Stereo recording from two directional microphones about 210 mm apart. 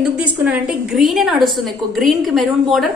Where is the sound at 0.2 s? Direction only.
5° right (ahead or behind).